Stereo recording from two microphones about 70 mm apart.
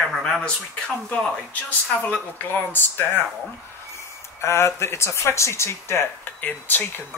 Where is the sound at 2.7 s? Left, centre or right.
Left.